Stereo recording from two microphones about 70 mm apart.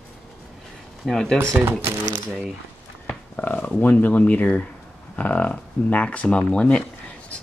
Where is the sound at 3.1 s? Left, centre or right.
Left.